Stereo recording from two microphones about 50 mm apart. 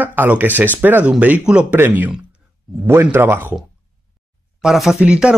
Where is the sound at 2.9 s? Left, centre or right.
Right.